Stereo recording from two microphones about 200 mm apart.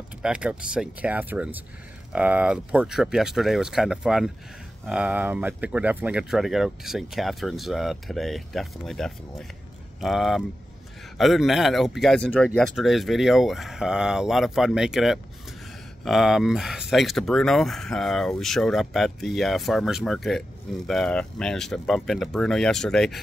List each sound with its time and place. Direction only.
0.2 s speech: 5° right (ahead or behind)